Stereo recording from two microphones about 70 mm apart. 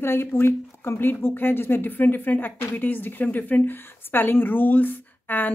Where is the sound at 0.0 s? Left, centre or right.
Left.